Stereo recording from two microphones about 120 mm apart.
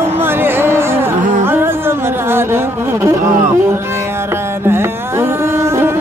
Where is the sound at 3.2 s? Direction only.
90° right.